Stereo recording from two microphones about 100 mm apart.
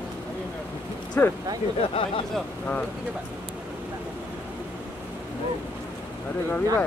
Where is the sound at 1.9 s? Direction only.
65° left (ahead or behind).